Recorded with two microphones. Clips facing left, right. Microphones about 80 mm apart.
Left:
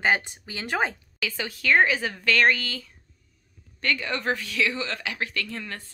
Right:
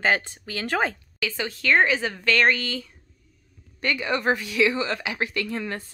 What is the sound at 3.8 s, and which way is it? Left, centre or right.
A woman's voice, centre.